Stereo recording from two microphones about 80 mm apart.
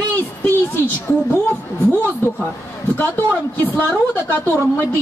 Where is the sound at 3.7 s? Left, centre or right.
Left.